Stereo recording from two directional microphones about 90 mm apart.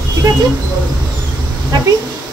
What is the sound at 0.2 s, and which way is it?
Speech, 35° right (ahead or behind).